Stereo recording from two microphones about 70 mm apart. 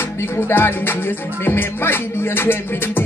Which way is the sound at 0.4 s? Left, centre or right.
Left.